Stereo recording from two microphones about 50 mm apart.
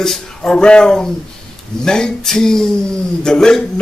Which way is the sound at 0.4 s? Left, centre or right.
Centre.